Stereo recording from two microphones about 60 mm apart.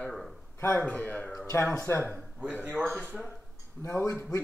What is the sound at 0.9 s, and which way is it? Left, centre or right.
Speech, left.